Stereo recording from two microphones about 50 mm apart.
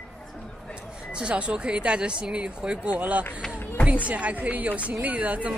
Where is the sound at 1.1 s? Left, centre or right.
Right.